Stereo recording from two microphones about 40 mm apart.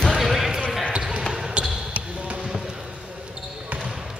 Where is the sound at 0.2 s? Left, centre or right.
Centre.